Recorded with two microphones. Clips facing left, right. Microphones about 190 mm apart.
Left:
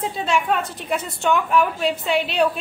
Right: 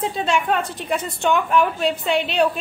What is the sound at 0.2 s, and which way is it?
A woman's voice, centre (ahead or behind).